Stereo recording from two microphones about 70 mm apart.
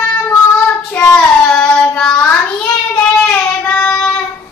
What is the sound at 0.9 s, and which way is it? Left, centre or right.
Child singing, centre.